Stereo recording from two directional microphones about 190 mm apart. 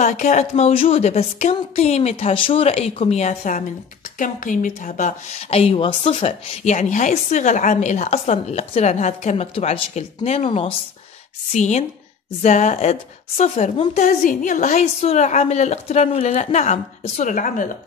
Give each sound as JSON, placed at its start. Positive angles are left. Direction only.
{"t": 0.0, "sound": "a woman's voice", "side_deg": 40}